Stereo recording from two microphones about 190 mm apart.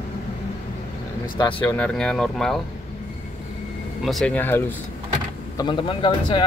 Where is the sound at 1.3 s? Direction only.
25° left (ahead or behind).